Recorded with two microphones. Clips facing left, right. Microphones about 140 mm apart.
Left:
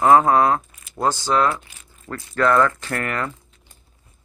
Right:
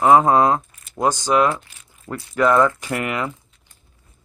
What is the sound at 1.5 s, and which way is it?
Speech, centre (ahead or behind).